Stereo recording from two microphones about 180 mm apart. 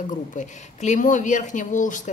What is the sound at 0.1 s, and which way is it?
Speech, 45° left (ahead or behind).